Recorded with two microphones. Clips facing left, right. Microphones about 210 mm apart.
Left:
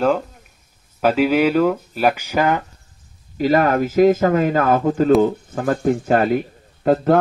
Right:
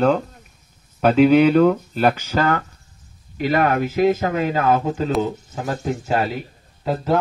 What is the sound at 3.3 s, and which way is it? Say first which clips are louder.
Speech: left 3 dB; 40° left (ahead or behind).